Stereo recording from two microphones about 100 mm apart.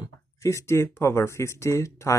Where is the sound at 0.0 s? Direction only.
30° left (ahead or behind).